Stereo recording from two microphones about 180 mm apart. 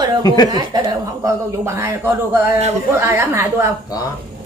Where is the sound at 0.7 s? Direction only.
20° right (ahead or behind).